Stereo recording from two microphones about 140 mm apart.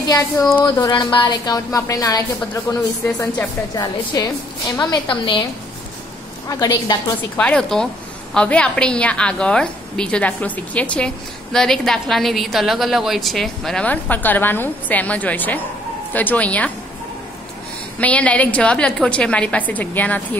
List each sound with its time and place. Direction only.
0.7 s a woman's voice: 30° left (ahead or behind)
5.0 s a woman's voice: 35° left (ahead or behind)
6.5 s a woman's voice: 30° left (ahead or behind)
7.2 s a woman's voice: 10° left (ahead or behind)
18.0 s a woman's voice: 10° left (ahead or behind)